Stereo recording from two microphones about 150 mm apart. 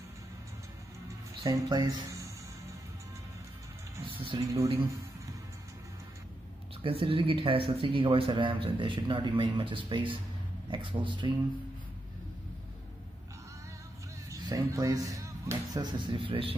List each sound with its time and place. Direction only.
1.4 s speech: 25° right (ahead or behind)
4.0 s music: 35° right (ahead or behind)
4.4 s speech: 20° right (ahead or behind)
6.8 s speech: 35° right (ahead or behind)
14.4 s speech: 25° right (ahead or behind)